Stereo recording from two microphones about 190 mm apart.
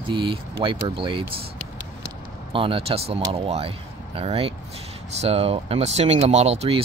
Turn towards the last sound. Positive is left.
turn(degrees=-35)  # may be behind; listen again after turning